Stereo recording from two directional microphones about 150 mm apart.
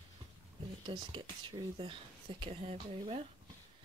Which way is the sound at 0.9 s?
35° right (ahead or behind).